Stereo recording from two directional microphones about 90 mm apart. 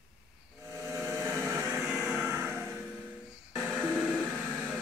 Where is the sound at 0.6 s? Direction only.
30° right (ahead or behind).